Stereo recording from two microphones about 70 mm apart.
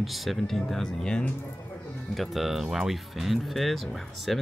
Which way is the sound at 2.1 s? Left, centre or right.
Centre.